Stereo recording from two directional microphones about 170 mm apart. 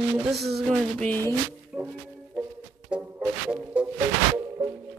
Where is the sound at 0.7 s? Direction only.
5° left (ahead or behind).